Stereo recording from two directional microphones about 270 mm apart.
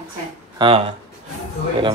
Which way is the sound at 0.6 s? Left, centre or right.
Centre.